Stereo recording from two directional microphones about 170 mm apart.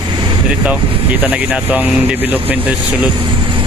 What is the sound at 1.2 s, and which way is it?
Speech, 10° right (ahead or behind).